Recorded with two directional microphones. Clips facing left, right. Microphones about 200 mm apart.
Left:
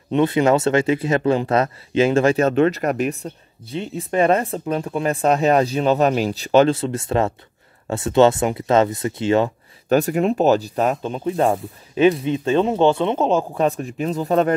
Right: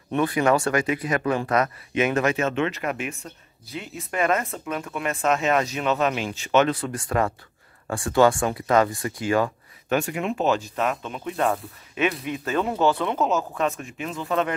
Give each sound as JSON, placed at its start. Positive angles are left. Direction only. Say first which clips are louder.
{"t": 0.1, "sound": "speech", "louder": "left 5 dB", "side_deg": 25}
{"t": 9.8, "sound": "speech", "louder": "left 7 dB", "side_deg": 40}